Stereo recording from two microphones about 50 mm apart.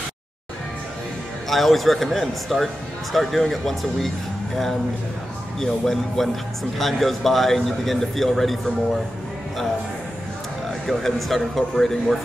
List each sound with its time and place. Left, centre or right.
1.5 s speech: centre
5.6 s speech: centre
10.9 s speech: centre